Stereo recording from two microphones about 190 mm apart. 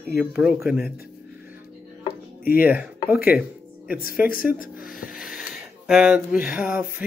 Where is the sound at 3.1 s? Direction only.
50° left (ahead or behind).